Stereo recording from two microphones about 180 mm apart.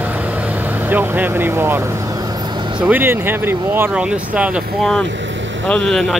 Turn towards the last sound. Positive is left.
turn(degrees=5)  # may be behind; listen again after turning